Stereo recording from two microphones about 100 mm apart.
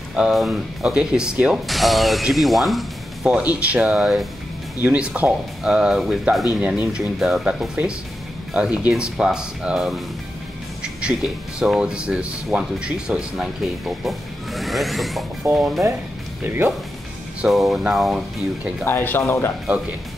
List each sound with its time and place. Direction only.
0.1 s speech: centre (ahead or behind)
3.3 s speech: 15° right (ahead or behind)
7.8 s speech: 15° right (ahead or behind); by 10.0 s centre (ahead or behind)
10.8 s music: 10° right (ahead or behind)
11.6 s speech: 5° right (ahead or behind)
16.4 s speech: 20° right (ahead or behind)
17.5 s speech: centre (ahead or behind)
18.9 s speech: 20° left (ahead or behind)